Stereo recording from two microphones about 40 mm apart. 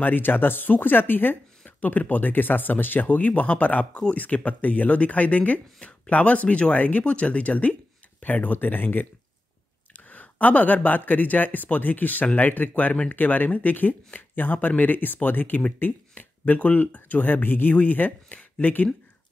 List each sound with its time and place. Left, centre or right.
0.0 s speech: left
17.7 s speech: left